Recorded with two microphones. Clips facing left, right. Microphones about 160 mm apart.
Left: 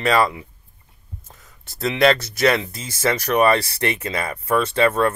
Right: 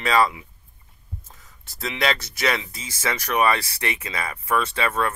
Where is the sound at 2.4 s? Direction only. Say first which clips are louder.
Left 6 dB; 50° left (ahead or behind).